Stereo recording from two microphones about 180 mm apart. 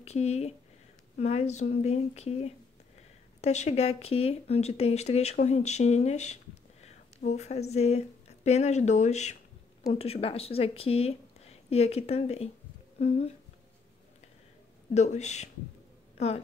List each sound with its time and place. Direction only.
0.0 s speech: 35° left (ahead or behind)
15.0 s speech: 40° left (ahead or behind)